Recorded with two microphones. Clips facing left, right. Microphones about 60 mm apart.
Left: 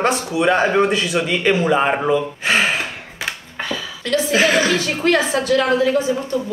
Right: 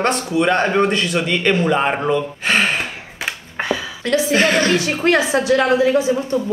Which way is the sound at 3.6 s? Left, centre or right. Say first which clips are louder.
Right 5 dB; right.